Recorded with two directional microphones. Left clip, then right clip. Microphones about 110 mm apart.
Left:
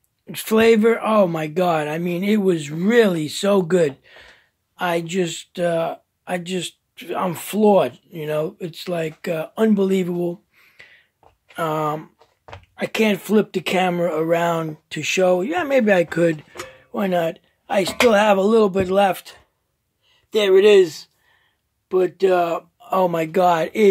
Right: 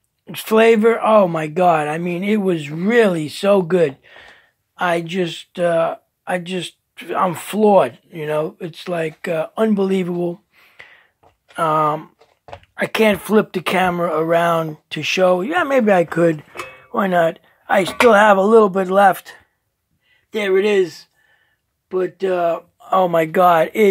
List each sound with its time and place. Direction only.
0.3 s speech: 5° left (ahead or behind)
3.0 s speech: centre (ahead or behind)
10.3 s a sound: 15° left (ahead or behind)
11.5 s speech: centre (ahead or behind)
21.9 s speech: 35° left (ahead or behind)
22.8 s speech: 15° left (ahead or behind)
23.3 s speech: 25° left (ahead or behind)